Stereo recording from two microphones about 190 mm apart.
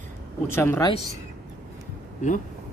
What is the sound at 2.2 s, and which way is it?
Speech, 40° left (ahead or behind).